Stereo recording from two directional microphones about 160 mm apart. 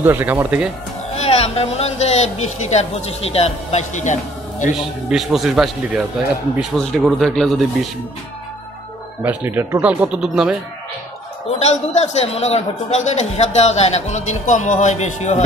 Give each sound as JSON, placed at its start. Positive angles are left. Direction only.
{"t": 0.0, "sound": "speech", "side_deg": -15}
{"t": 1.1, "sound": "a man's voice", "side_deg": 40}
{"t": 5.1, "sound": "speech", "side_deg": 0}
{"t": 9.2, "sound": "speech", "side_deg": -10}
{"t": 11.6, "sound": "a man's voice", "side_deg": 45}